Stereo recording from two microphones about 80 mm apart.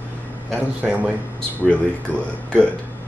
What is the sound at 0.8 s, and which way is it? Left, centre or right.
Speech, centre.